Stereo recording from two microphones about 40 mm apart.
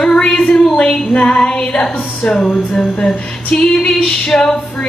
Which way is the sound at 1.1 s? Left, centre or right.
Left.